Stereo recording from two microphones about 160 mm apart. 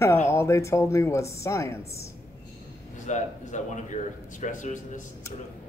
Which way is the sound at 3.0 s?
50° left (ahead or behind).